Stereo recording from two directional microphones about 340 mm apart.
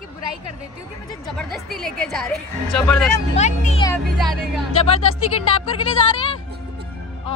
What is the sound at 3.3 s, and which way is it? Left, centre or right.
Speech, centre.